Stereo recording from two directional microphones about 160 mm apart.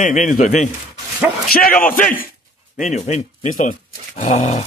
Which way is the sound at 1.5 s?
65° left (ahead or behind).